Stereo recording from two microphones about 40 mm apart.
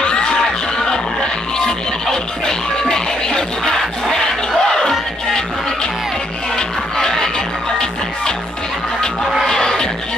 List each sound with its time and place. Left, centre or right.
0.0 s music: left
4.5 s crowd: centre
6.5 s music: centre
9.5 s music: centre